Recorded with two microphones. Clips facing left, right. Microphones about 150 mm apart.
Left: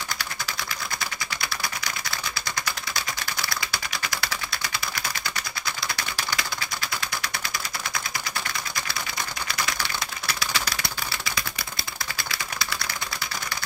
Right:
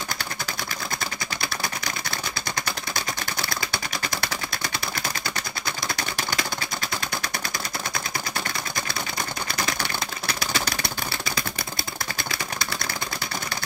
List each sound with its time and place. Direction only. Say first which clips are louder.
5.9 s typewriter: right 2 dB; 50° right (ahead or behind)
10.4 s typewriter: right 2 dB; 50° right (ahead or behind)
12.2 s typewriter: right 1 dB; 55° right (ahead or behind)